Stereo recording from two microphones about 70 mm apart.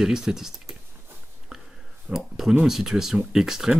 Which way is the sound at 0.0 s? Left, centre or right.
Centre.